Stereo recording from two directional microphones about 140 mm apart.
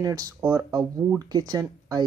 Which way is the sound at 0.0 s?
20° right (ahead or behind).